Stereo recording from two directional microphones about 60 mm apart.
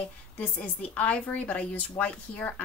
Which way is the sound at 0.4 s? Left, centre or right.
Left.